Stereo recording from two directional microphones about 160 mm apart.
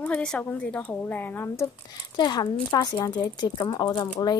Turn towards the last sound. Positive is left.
turn(degrees=25)  # may be behind; listen again after turning